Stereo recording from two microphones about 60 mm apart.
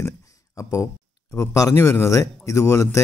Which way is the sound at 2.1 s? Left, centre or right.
Left.